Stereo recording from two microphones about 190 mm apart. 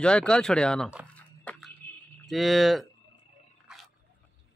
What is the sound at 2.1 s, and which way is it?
Speech, centre (ahead or behind).